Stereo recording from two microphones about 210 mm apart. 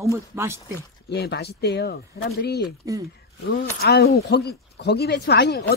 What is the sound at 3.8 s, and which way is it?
Speech, 50° left (ahead or behind).